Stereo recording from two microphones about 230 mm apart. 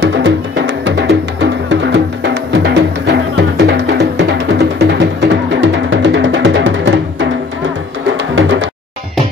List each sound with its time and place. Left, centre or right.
0.0 s music: right